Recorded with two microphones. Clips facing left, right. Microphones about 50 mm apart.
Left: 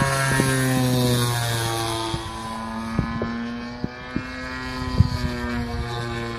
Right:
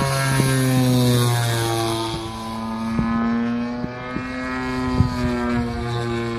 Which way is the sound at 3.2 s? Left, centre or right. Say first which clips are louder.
Right 7 dB; centre.